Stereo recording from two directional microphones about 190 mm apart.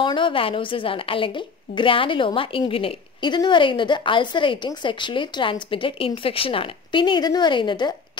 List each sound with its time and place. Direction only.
0.0 s a woman's voice: 25° left (ahead or behind)